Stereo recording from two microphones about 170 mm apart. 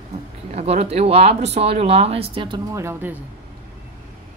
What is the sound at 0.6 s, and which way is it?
Speech, 40° right (ahead or behind).